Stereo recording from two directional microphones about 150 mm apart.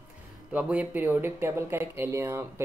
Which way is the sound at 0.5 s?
10° right (ahead or behind).